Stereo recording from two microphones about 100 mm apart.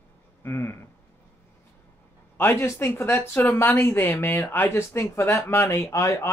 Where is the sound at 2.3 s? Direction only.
20° left (ahead or behind).